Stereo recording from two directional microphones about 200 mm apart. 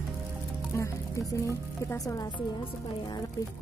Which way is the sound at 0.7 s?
15° left (ahead or behind).